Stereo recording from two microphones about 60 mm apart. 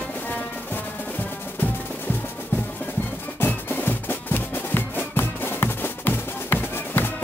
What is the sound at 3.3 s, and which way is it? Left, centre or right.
Music, left.